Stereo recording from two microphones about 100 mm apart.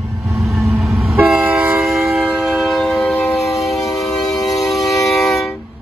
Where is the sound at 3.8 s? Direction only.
35° left (ahead or behind).